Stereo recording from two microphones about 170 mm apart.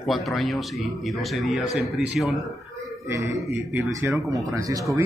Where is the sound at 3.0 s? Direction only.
20° right (ahead or behind).